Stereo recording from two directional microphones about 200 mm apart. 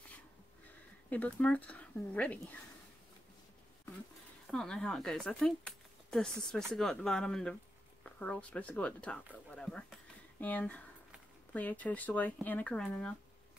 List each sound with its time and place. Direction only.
1.1 s speech: 5° left (ahead or behind)
4.5 s speech: 5° left (ahead or behind)